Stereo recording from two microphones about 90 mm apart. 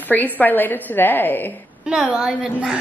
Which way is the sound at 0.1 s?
20° left (ahead or behind).